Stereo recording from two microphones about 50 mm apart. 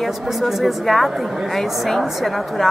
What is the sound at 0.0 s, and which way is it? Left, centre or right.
A woman's voice, centre.